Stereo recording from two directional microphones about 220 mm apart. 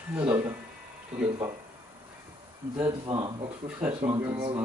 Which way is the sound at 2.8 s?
20° right (ahead or behind).